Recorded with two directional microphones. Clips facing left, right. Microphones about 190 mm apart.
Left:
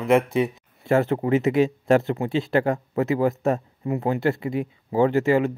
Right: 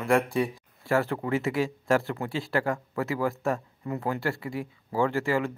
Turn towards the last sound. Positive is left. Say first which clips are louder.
# left 7 dB
turn(degrees=20)  # may be behind; listen again after turning